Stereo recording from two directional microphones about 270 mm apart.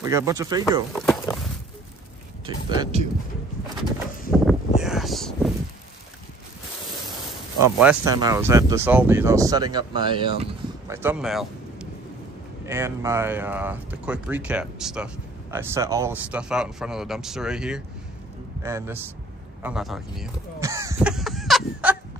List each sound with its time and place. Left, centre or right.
0.0 s speech: centre
0.9 s walk: centre
2.4 s speech: centre
4.3 s a sound: centre
7.7 s speech: centre
20.6 s a sound: centre